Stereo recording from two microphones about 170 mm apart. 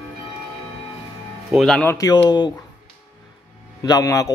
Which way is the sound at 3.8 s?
20° left (ahead or behind).